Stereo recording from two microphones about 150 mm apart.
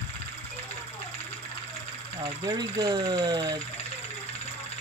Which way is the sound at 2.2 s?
25° right (ahead or behind).